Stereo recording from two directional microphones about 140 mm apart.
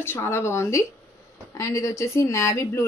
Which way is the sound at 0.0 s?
15° left (ahead or behind).